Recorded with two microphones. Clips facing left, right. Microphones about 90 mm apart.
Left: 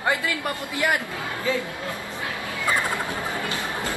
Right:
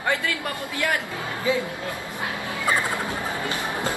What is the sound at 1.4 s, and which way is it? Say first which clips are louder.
Speech: right 2 dB; 20° right (ahead or behind).